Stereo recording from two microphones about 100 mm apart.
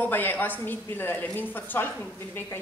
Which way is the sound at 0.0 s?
20° left (ahead or behind).